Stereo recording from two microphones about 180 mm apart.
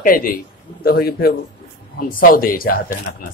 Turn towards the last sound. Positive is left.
turn(degrees=55)  # may be behind; listen again after turning